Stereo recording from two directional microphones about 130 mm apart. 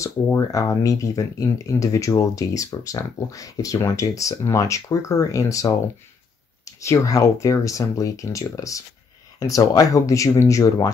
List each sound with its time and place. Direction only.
0.0 s speech: 25° left (ahead or behind)